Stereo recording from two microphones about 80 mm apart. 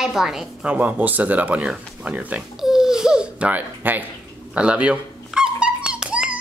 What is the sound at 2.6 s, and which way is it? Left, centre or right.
Babbling, centre.